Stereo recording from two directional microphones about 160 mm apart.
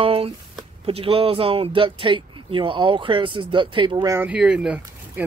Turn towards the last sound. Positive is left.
turn(degrees=-5)  # may be behind; listen again after turning